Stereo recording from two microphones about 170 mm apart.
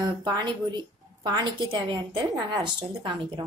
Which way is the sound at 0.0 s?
20° right (ahead or behind).